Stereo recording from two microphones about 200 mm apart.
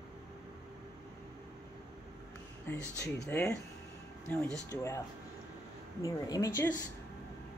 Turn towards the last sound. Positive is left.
turn(degrees=15)  # may be behind; listen again after turning